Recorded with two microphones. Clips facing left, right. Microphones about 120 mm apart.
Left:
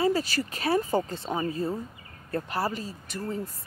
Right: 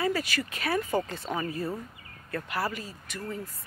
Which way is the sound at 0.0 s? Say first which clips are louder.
Left 3 dB; 30° left (ahead or behind).